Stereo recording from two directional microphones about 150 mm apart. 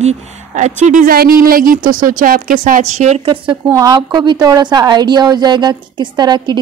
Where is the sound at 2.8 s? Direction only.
50° right (ahead or behind).